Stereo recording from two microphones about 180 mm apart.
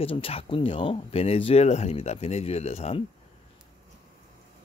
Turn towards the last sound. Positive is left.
turn(degrees=35)  # may be behind; listen again after turning